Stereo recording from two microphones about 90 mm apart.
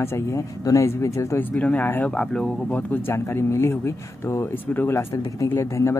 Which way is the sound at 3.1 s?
30° left (ahead or behind).